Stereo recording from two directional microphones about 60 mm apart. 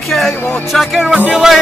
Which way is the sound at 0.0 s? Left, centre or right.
Centre.